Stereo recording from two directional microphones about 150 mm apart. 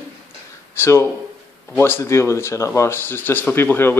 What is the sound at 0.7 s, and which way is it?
Speech, 15° left (ahead or behind).